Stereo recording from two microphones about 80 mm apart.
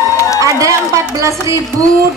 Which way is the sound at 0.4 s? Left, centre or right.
Right.